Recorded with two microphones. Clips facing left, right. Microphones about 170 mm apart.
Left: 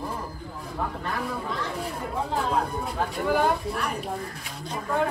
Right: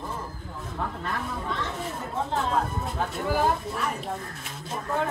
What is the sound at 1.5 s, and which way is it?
Speech, centre (ahead or behind).